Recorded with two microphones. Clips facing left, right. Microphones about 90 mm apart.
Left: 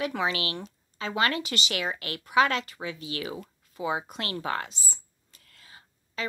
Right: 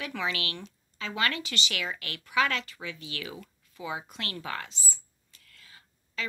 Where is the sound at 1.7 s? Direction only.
30° left (ahead or behind).